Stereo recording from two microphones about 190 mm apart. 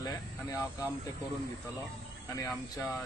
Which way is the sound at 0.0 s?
20° left (ahead or behind).